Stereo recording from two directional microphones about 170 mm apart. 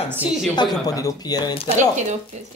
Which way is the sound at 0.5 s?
20° left (ahead or behind).